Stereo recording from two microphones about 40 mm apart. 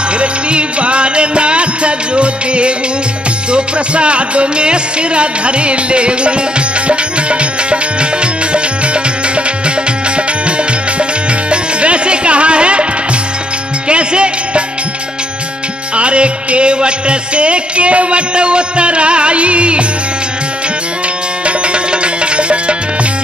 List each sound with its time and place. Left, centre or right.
0.2 s music: right
11.5 s music: right
13.8 s music: right
16.0 s music: right
21.5 s music: right